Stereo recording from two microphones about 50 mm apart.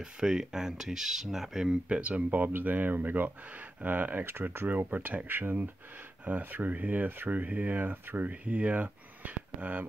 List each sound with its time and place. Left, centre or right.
0.0 s speech: centre
1.7 s speech: right
2.4 s speech: right
4.6 s speech: right